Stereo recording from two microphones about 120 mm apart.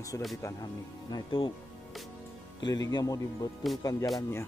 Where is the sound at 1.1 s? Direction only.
45° left (ahead or behind).